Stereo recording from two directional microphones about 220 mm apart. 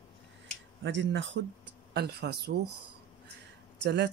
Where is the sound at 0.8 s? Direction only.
55° right (ahead or behind).